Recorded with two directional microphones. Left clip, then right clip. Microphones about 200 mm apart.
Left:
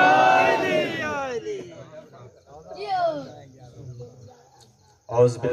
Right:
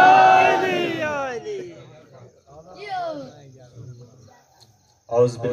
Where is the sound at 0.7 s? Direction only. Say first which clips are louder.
Right 1 dB; 40° right (ahead or behind).